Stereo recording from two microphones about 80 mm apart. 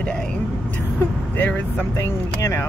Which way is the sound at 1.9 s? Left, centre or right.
Left.